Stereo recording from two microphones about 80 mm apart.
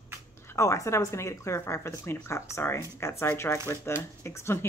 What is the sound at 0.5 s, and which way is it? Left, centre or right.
Speech, left.